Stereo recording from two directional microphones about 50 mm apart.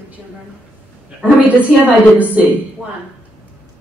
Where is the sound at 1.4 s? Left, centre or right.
Right.